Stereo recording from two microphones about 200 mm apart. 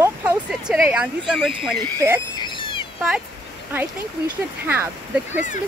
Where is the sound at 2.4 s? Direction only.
25° left (ahead or behind).